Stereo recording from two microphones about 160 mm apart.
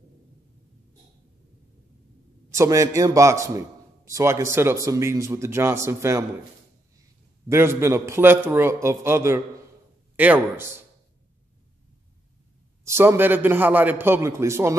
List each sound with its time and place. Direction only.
2.5 s a man's voice: 20° right (ahead or behind)
7.4 s a man's voice: 15° right (ahead or behind)
12.8 s a man's voice: 15° right (ahead or behind)